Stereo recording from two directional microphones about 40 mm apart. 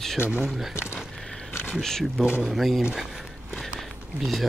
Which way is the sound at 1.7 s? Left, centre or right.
Centre.